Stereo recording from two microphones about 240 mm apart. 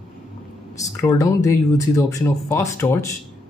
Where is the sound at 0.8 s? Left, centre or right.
Centre.